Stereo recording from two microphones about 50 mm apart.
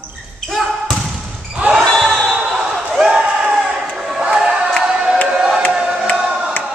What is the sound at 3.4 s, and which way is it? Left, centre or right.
Crowd, centre.